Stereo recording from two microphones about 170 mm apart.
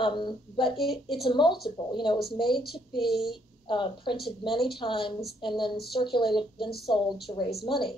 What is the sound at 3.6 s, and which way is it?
Speech, 30° left (ahead or behind).